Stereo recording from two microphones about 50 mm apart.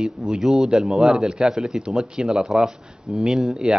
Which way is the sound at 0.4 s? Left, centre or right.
Centre.